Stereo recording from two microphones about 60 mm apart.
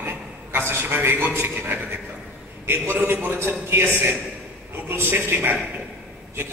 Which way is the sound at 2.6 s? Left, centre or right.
Right.